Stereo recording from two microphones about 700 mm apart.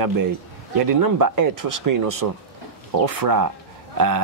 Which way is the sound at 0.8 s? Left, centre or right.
Right.